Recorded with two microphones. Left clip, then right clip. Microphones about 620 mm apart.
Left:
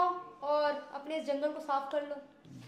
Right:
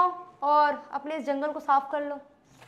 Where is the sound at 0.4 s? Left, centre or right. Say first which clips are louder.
Right 10 dB; right.